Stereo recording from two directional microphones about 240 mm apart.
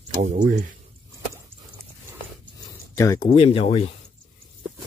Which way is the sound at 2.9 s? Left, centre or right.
Centre.